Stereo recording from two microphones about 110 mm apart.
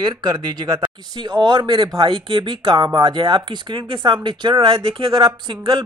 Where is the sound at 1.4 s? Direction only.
45° right (ahead or behind).